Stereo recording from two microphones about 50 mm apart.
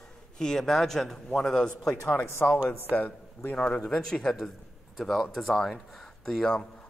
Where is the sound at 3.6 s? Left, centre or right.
Centre.